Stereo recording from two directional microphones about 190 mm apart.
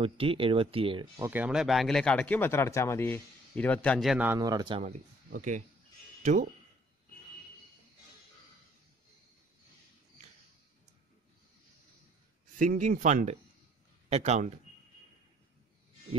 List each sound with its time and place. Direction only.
0.0 s speech: 30° right (ahead or behind)
1.2 s speech: 10° right (ahead or behind)
4.4 s speech: 20° right (ahead or behind)
4.8 s speech: 40° right (ahead or behind)
12.5 s speech: 45° right (ahead or behind)